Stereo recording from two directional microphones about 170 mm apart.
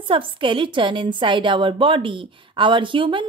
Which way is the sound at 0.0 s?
30° right (ahead or behind).